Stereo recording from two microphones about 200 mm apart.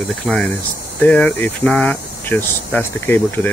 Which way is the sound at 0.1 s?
5° left (ahead or behind).